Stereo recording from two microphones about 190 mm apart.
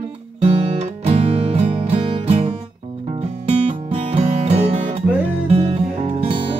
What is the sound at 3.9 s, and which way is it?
Music, 35° right (ahead or behind).